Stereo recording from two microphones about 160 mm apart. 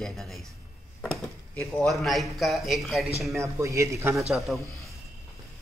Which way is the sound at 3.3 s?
20° right (ahead or behind).